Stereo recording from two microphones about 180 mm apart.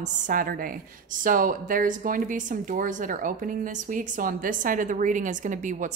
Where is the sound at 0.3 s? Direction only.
50° right (ahead or behind).